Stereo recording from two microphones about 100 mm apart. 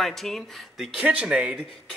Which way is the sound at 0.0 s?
Centre (ahead or behind).